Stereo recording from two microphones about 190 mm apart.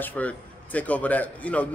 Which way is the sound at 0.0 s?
10° left (ahead or behind).